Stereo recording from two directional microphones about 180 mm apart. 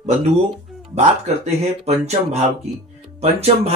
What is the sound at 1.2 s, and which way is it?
Speech, 35° right (ahead or behind).